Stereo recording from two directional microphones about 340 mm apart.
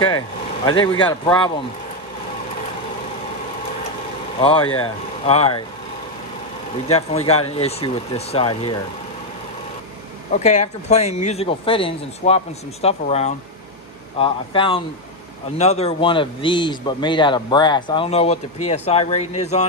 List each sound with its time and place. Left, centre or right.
0.7 s speech: centre
4.4 s speech: centre
6.9 s speech: centre
10.3 s speech: left